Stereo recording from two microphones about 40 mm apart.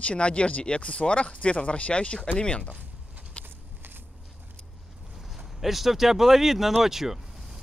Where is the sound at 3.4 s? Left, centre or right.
Right.